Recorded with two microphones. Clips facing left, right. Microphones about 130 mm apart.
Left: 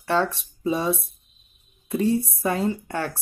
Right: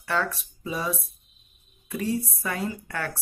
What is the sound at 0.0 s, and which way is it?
A woman's voice, 25° left (ahead or behind).